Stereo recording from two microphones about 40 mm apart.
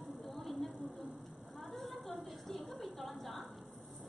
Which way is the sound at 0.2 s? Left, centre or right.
Centre.